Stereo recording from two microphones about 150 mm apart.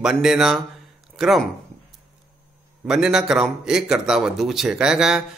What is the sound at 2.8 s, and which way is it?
A man's voice, 5° right (ahead or behind).